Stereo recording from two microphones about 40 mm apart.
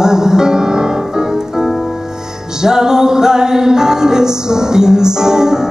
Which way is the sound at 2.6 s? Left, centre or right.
Centre.